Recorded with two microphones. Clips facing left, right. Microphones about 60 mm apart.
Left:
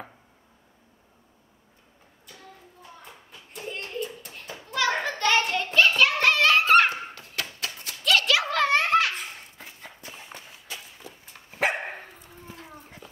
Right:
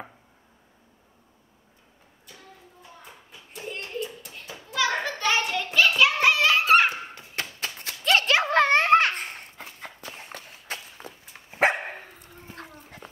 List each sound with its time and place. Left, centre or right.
3.1 s a sound: centre
4.4 s hands: centre
8.0 s dog: right
8.9 s walk: right
11.3 s dog: right
13.0 s clip-clop: right